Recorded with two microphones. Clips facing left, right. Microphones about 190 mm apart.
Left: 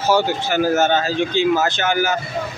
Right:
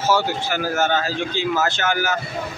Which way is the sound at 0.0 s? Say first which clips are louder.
Left 3 dB; 15° left (ahead or behind).